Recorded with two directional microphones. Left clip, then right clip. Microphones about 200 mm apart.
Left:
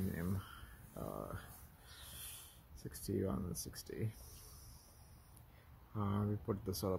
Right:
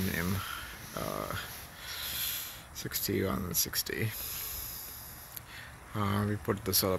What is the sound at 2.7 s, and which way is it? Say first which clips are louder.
Speech: right 9 dB; centre (ahead or behind).